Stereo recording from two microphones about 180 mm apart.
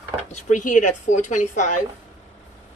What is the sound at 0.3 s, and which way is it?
Speech, 40° left (ahead or behind).